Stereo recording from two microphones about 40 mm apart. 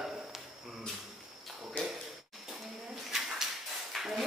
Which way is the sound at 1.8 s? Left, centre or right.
Left.